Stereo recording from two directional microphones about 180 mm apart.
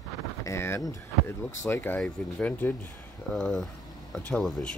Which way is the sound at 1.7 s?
15° left (ahead or behind).